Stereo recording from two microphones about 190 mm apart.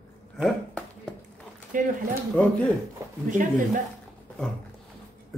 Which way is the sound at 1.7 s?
45° right (ahead or behind).